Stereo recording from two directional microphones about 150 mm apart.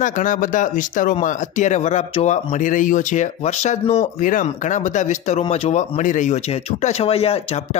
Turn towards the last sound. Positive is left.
turn(degrees=40)  # may be behind; listen again after turning